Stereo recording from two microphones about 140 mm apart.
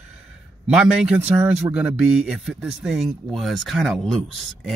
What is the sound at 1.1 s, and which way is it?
Speech, 15° right (ahead or behind).